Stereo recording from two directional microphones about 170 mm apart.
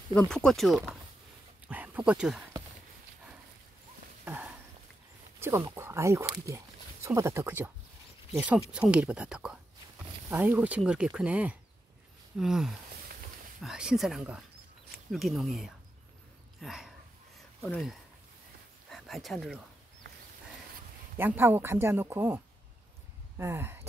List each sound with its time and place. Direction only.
0.1 s speech: 5° left (ahead or behind)
4.2 s a sound: 10° right (ahead or behind)
5.4 s speech: 15° right (ahead or behind)
18.9 s speech: centre (ahead or behind)
21.2 s speech: 10° right (ahead or behind)